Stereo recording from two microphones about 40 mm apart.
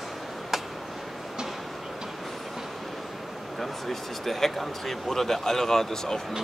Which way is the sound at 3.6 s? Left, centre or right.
Centre.